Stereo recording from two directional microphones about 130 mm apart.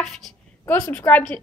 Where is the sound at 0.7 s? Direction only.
15° left (ahead or behind).